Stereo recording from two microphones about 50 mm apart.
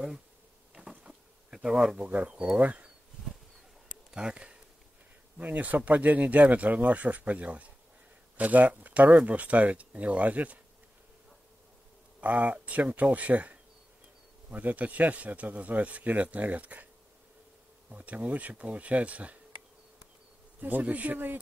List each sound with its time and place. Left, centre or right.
0.7 s insect: centre
1.6 s speech: centre
2.0 s speech: right
4.1 s speech: centre
5.4 s speech: right
12.2 s speech: right
17.8 s speech: right
20.6 s speech: right